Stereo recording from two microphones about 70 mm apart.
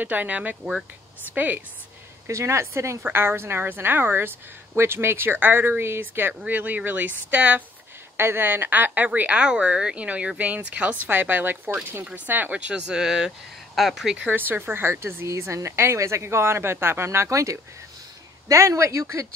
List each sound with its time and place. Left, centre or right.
0.0 s a woman's voice: right
2.2 s a woman's voice: right
8.2 s a woman's voice: right
12.5 s speech: centre
14.2 s speech: right